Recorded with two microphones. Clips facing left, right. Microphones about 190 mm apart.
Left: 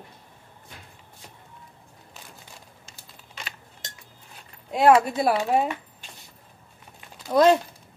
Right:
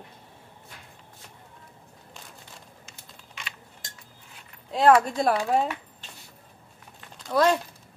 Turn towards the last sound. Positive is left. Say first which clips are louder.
# left 4 dB
turn(degrees=20)  # may be behind; listen again after turning